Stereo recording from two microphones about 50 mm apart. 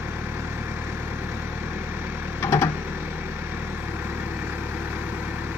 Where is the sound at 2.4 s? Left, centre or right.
Left.